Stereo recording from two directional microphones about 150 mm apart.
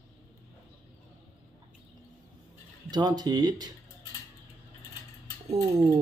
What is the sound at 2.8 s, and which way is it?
Speech, 30° right (ahead or behind).